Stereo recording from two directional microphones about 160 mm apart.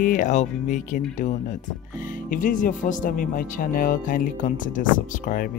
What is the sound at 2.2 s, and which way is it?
Speech, 60° left (ahead or behind).